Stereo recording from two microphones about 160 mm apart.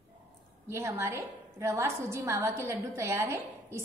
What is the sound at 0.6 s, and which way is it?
A woman's voice, 15° right (ahead or behind).